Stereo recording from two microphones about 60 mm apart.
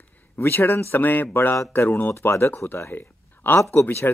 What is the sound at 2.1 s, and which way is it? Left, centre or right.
Speech, left.